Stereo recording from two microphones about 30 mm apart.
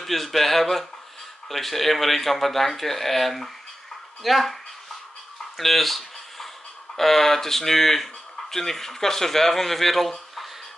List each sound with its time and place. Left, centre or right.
0.0 s speech: centre
5.6 s a sound: centre
7.0 s speech: centre